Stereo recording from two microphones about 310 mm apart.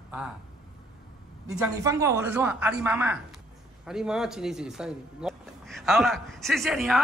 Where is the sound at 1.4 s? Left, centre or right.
Centre.